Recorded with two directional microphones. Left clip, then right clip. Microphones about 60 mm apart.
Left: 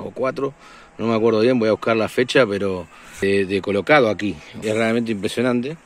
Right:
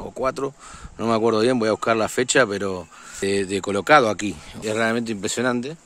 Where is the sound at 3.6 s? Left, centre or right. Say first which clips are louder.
Right 2 dB; right.